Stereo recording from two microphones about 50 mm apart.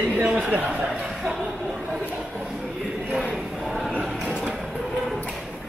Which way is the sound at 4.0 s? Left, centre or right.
Centre.